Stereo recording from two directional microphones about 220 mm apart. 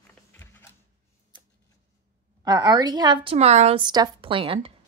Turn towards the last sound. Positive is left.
turn(degrees=-25)  # may be behind; listen again after turning